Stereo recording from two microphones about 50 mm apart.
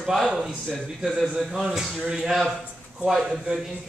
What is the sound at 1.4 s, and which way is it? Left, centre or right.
A man's voice, centre.